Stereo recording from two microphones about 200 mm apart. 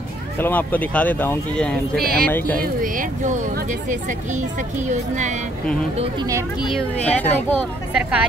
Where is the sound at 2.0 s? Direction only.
50° right (ahead or behind).